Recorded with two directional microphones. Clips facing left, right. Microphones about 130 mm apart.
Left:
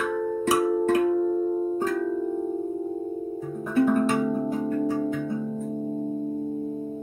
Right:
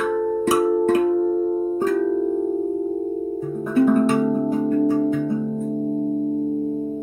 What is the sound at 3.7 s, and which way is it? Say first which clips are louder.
Music: right 5 dB; 20° right (ahead or behind).